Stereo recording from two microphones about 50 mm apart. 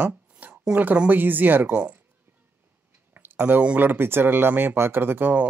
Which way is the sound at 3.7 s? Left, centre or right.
Right.